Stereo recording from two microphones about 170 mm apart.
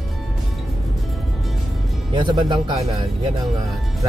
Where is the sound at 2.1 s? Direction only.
25° right (ahead or behind).